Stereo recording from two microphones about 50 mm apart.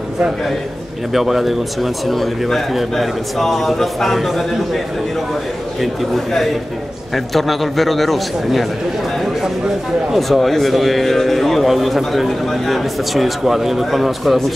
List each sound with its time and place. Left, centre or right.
1.1 s speech: centre
10.1 s speech: centre